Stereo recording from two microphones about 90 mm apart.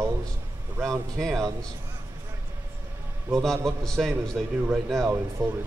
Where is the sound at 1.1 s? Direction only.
5° left (ahead or behind).